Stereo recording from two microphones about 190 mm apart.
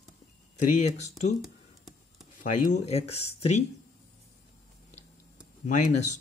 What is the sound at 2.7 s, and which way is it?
Speech, 35° left (ahead or behind).